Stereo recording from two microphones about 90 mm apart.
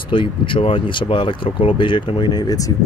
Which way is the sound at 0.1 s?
70° left (ahead or behind).